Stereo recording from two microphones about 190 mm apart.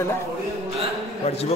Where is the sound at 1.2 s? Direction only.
35° left (ahead or behind).